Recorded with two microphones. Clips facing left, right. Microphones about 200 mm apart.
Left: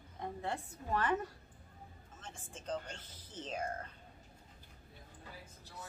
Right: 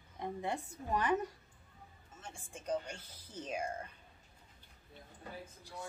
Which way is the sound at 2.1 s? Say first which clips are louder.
Right 1 dB; 10° right (ahead or behind).